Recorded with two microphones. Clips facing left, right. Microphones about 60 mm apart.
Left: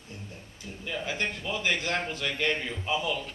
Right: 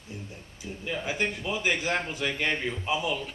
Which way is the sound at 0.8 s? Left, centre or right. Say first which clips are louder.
Right 2 dB; centre.